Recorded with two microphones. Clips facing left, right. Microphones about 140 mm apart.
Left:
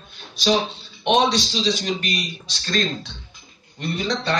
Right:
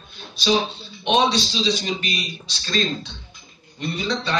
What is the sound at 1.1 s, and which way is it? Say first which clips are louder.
A man's voice: left 1 dB; 50° left (ahead or behind).